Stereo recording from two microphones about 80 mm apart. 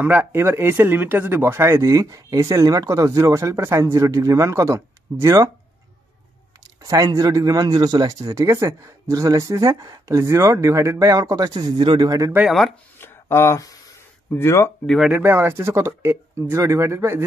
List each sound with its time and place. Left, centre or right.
0.0 s speech: right
6.8 s speech: right
11.8 s a man's voice: right
12.4 s speech: centre
13.0 s a sound: left
14.3 s speech: left
15.2 s speech: right